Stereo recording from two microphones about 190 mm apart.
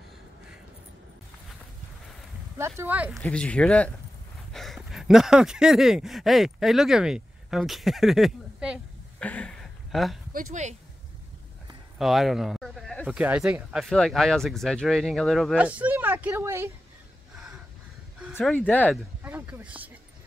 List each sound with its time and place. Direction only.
2.5 s speech: 15° right (ahead or behind)
3.2 s speech: 5° left (ahead or behind)
9.2 s a sound: 5° left (ahead or behind)
10.3 s speech: 40° right (ahead or behind)
12.0 s speech: centre (ahead or behind)
18.3 s speech: 10° left (ahead or behind)
19.2 s speech: 10° right (ahead or behind)